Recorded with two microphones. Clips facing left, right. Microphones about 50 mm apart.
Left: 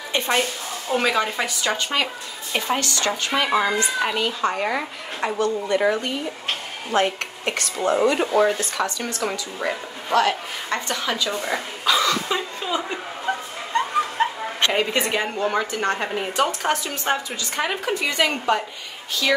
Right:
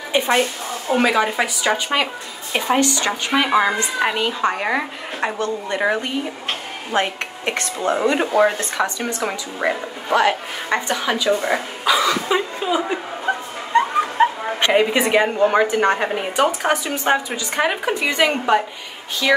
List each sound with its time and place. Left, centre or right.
0.1 s a woman's voice: centre; by 5.9 s right
6.9 s a woman's voice: right
11.8 s chuckle: centre
13.7 s a sound: centre
14.2 s bow-wow: centre
14.6 s a woman's voice: centre